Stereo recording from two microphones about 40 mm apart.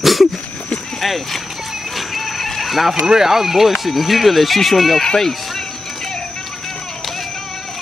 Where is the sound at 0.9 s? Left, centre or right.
Centre.